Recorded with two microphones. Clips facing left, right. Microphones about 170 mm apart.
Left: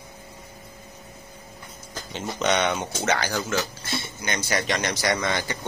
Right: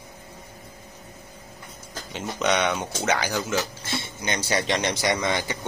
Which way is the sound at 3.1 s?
15° right (ahead or behind).